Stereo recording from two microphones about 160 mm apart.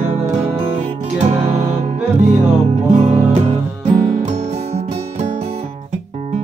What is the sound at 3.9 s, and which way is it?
Music, 50° right (ahead or behind).